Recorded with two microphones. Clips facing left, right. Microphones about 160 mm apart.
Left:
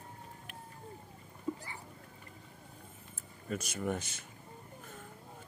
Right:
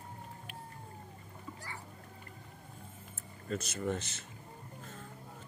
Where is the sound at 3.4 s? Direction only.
10° left (ahead or behind).